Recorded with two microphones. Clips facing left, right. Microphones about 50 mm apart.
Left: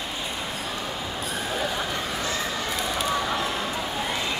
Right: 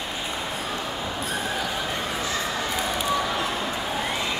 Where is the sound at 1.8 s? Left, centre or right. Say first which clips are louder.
Right 1 dB; centre.